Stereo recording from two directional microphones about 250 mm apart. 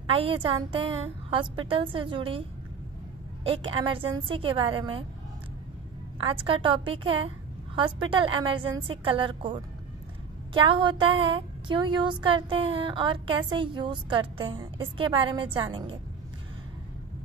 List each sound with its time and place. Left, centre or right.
0.0 s a woman's voice: right
3.4 s a woman's voice: right
6.1 s a woman's voice: right